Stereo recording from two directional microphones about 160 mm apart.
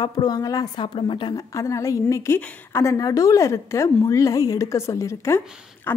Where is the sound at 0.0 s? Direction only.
25° left (ahead or behind).